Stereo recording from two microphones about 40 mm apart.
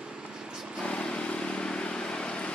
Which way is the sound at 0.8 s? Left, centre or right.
Left.